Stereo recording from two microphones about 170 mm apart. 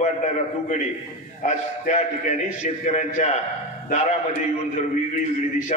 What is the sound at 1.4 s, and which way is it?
A man's voice, 40° left (ahead or behind).